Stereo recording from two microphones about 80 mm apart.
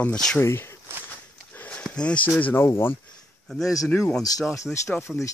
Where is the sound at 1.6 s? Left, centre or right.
Left.